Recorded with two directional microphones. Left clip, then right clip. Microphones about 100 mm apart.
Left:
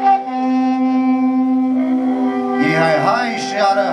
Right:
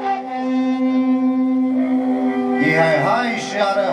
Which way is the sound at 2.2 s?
25° left (ahead or behind).